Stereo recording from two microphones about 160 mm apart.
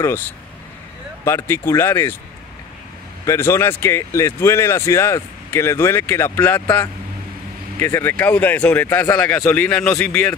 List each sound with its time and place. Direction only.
1.2 s speech: 15° left (ahead or behind)
3.3 s speech: 15° left (ahead or behind)